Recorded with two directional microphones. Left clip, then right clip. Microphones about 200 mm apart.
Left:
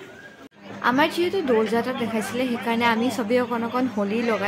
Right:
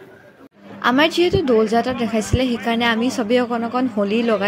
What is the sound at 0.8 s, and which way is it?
A woman's voice, 25° right (ahead or behind).